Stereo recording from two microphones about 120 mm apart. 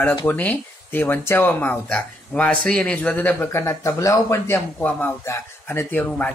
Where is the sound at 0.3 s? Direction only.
15° left (ahead or behind).